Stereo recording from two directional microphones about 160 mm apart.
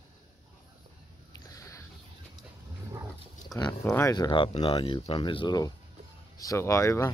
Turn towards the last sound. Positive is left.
turn(degrees=20)  # may be behind; listen again after turning